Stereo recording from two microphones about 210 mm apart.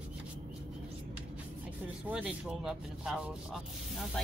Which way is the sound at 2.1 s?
5° right (ahead or behind).